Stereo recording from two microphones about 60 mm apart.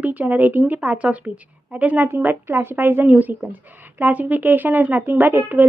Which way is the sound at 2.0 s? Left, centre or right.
Right.